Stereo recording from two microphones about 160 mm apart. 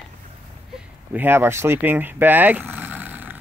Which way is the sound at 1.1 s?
15° right (ahead or behind).